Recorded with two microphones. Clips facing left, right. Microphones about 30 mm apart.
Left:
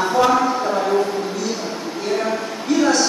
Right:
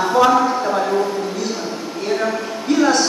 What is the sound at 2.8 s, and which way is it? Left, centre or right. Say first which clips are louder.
Speech: right 1 dB; centre.